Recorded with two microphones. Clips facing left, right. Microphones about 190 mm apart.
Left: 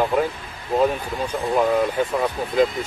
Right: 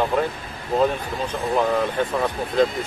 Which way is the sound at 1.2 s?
10° left (ahead or behind).